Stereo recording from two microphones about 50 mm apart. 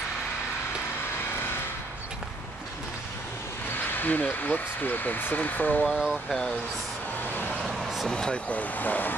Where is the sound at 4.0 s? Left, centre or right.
Left.